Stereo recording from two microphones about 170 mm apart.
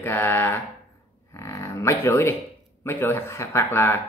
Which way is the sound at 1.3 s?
15° left (ahead or behind).